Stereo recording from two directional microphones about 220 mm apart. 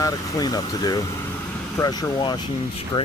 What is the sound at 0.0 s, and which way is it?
Speech, 15° left (ahead or behind).